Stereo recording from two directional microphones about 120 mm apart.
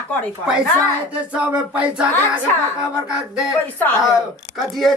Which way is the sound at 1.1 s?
10° right (ahead or behind).